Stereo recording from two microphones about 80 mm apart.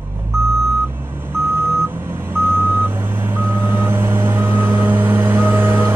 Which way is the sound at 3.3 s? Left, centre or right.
Right.